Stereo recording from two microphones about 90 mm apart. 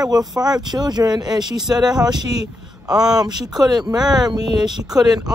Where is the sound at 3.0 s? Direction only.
50° right (ahead or behind).